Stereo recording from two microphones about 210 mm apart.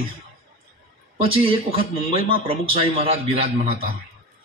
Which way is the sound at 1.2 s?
25° right (ahead or behind).